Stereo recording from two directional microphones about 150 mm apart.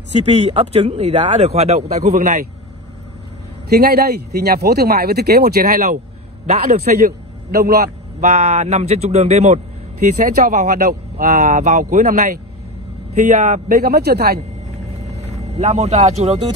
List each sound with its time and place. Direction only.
0.3 s speech: 40° right (ahead or behind)
3.6 s speech: 90° right
6.4 s speech: 50° right (ahead or behind)
7.1 s a man's voice: 90° right
8.2 s speech: 45° right (ahead or behind)
10.7 s speech: 80° right
11.3 s speech: 55° right (ahead or behind); by 14.4 s 90° right
14.7 s vehicle: 45° right (ahead or behind)